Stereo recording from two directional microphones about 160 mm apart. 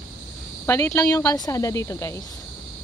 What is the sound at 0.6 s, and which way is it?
Speech, 15° left (ahead or behind).